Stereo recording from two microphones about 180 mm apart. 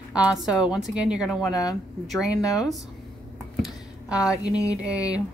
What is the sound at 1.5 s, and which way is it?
Speech, 20° left (ahead or behind).